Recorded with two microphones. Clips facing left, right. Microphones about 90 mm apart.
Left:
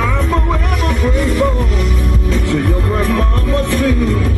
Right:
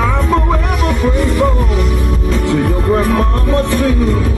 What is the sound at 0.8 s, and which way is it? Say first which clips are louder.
Music: right 1 dB; centre (ahead or behind).